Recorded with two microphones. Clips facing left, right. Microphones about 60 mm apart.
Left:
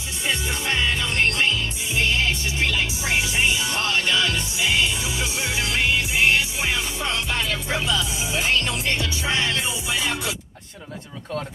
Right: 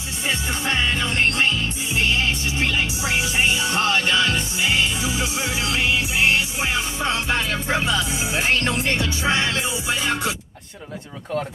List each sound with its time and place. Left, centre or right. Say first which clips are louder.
0.5 s music: right 2 dB; right
7.0 s music: right 3 dB; right
7.7 s speech: right 3 dB; right
9.3 s music: right 2 dB; right
9.8 s speech: right 4 dB; right